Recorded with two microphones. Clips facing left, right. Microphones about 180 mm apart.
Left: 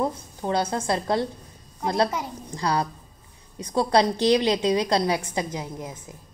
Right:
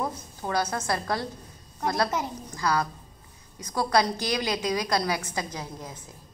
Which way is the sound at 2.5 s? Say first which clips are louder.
Left 2 dB; 30° left (ahead or behind).